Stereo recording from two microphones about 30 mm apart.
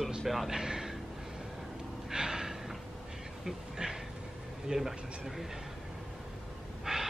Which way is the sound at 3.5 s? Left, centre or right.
Centre.